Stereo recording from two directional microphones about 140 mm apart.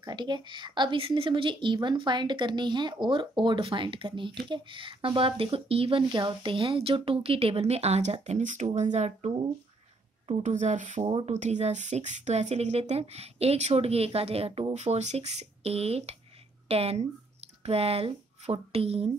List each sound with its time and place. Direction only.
0.0 s a woman's voice: 30° right (ahead or behind)